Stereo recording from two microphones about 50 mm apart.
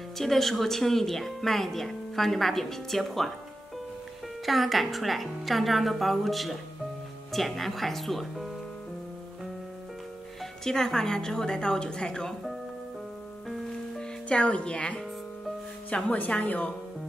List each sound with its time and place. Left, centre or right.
0.2 s speech: centre
4.5 s speech: centre
10.6 s a woman's voice: centre
13.9 s speech: left